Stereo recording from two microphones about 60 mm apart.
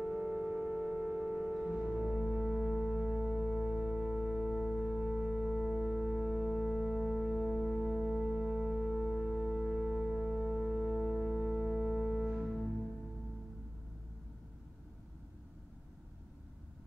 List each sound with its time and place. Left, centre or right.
0.0 s music: right
1.7 s music: centre
7.7 s music: centre